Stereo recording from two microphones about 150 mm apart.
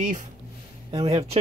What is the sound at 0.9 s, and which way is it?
Speech, 40° right (ahead or behind).